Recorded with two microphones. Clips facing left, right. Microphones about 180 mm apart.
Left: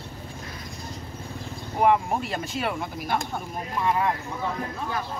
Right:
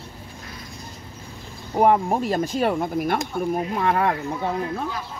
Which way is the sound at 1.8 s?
40° right (ahead or behind).